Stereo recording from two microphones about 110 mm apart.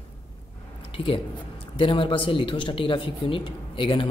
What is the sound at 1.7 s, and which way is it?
Speech, 55° left (ahead or behind).